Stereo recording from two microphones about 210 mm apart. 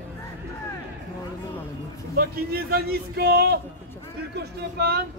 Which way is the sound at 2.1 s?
45° right (ahead or behind).